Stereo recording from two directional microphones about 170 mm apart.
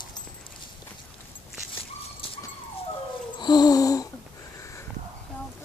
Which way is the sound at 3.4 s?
25° left (ahead or behind).